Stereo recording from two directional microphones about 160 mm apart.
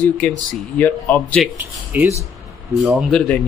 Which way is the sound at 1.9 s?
10° right (ahead or behind).